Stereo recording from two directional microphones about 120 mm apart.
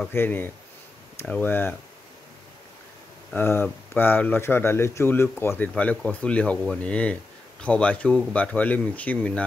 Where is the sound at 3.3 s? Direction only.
15° left (ahead or behind).